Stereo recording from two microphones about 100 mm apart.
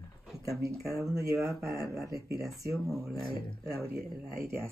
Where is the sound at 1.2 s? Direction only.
30° right (ahead or behind).